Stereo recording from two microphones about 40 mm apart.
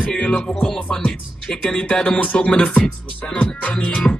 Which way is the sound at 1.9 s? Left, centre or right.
Left.